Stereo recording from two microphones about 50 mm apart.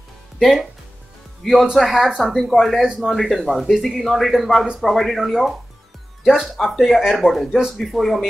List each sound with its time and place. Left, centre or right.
0.4 s speech: centre
7.2 s speech: centre